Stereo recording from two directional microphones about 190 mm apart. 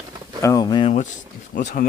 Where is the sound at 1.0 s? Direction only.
40° left (ahead or behind).